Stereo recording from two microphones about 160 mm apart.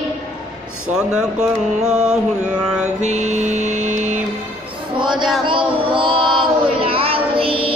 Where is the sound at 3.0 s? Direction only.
45° right (ahead or behind).